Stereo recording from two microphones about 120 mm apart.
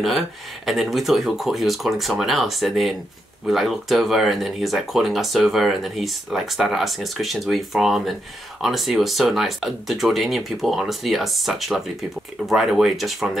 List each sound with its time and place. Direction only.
0.7 s speech: centre (ahead or behind)